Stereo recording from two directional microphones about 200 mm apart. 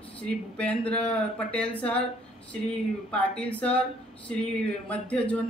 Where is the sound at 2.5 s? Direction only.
5° left (ahead or behind).